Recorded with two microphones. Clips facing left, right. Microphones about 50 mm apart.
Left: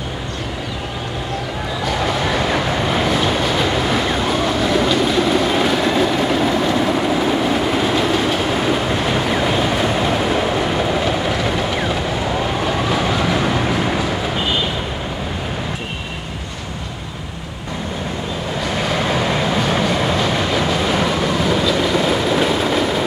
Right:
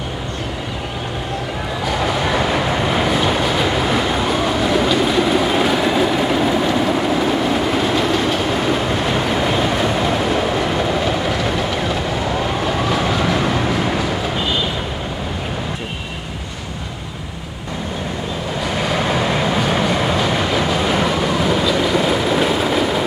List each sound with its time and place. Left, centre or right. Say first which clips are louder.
1.9 s train: right 1 dB; centre
18.8 s train: right 1 dB; centre